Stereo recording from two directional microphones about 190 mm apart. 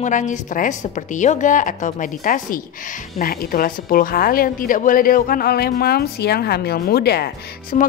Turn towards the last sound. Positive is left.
turn(degrees=45)  # may be behind; listen again after turning